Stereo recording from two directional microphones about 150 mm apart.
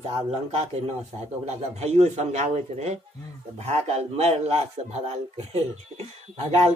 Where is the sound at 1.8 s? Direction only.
50° right (ahead or behind).